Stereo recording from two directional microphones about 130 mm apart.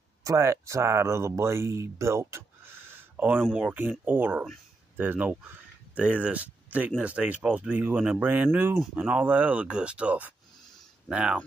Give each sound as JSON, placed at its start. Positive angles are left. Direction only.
{"t": 0.2, "sound": "speech", "side_deg": -25}